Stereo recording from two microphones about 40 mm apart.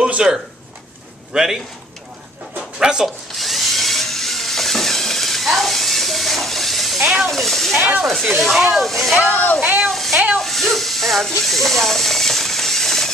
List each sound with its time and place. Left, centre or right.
0.0 s a sound: right
1.3 s speech: centre
2.8 s speech: centre
3.3 s drill: centre
7.2 s speech: centre
9.6 s speech: right
9.8 s speech: centre
10.4 s hiss: centre